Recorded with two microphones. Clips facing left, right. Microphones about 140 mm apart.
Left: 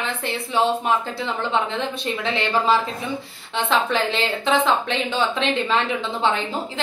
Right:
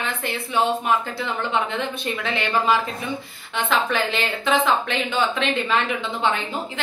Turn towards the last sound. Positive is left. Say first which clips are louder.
# left 1 dB
turn(degrees=30)  # may be behind; listen again after turning